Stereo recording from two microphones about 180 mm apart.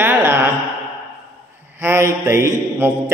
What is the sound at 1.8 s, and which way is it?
A man's voice, 15° right (ahead or behind).